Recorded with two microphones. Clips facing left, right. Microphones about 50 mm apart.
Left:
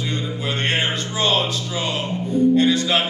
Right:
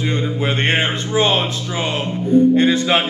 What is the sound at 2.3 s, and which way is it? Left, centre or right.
Music, right.